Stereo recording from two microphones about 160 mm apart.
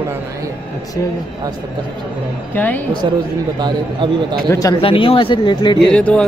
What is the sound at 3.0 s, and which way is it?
Speech, 30° right (ahead or behind).